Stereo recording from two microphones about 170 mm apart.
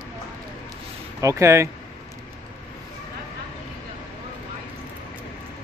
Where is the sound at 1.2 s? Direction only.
15° right (ahead or behind).